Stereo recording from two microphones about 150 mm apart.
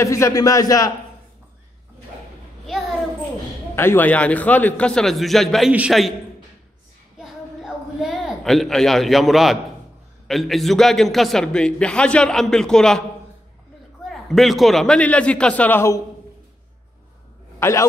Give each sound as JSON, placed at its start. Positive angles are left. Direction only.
{"t": 0.0, "sound": "a man's voice", "side_deg": 20}
{"t": 3.7, "sound": "a man's voice", "side_deg": 15}
{"t": 7.2, "sound": "a sound", "side_deg": 0}
{"t": 10.2, "sound": "a man's voice", "side_deg": 0}
{"t": 14.0, "sound": "a man's voice", "side_deg": 0}
{"t": 17.6, "sound": "a man's voice", "side_deg": 20}